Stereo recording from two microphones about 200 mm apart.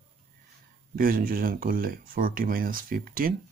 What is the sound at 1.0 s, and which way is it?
Speech, 45° right (ahead or behind).